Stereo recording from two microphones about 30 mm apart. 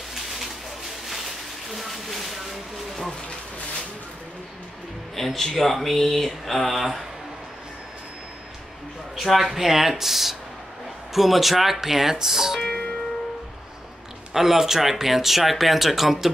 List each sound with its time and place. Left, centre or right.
1.7 s a sound: centre
5.1 s speech: centre
6.8 s a man's voice: centre
9.1 s speech: centre
12.6 s music: left
14.3 s speech: centre